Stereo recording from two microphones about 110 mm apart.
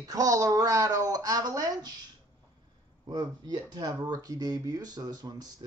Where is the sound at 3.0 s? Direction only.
40° right (ahead or behind).